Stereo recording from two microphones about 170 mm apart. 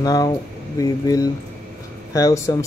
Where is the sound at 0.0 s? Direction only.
20° left (ahead or behind).